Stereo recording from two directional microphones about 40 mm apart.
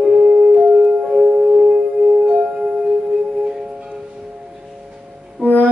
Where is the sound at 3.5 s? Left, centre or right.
Centre.